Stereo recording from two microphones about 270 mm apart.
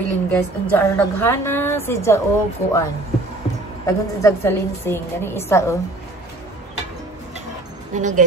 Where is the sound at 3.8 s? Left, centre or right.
Centre.